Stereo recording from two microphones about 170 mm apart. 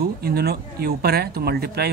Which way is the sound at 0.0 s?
65° right (ahead or behind).